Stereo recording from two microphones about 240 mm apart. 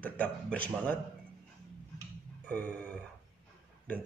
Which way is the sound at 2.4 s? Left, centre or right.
Centre.